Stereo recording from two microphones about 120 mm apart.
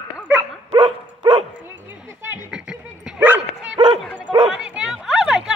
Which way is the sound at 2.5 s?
5° right (ahead or behind).